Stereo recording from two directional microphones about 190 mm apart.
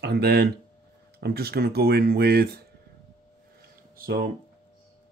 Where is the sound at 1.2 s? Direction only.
55° right (ahead or behind).